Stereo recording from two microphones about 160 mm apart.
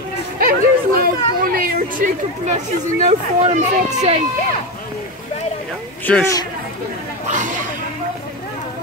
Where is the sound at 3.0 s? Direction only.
45° right (ahead or behind).